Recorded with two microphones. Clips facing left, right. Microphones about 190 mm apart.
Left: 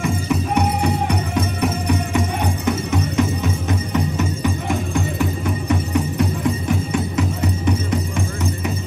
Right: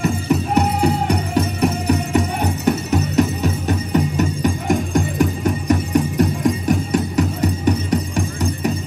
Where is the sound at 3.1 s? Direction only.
35° right (ahead or behind).